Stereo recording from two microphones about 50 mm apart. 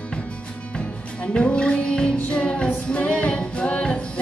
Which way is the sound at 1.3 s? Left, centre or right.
Left.